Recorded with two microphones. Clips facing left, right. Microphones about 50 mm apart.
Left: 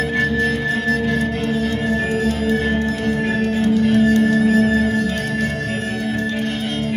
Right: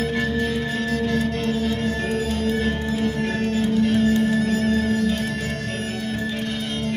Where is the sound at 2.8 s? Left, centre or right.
Left.